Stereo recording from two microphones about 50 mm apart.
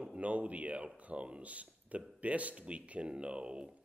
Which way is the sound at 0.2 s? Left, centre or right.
Right.